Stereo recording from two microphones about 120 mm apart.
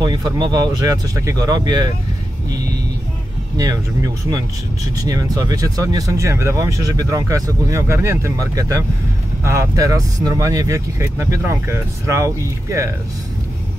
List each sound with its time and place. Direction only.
0.0 s speech: 35° right (ahead or behind)
3.5 s speech: 30° right (ahead or behind)